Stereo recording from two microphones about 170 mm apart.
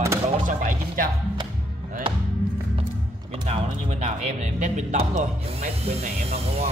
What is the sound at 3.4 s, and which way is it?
A man's voice, 35° right (ahead or behind).